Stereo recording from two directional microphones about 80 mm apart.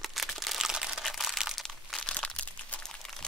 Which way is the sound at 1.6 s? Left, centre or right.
Centre.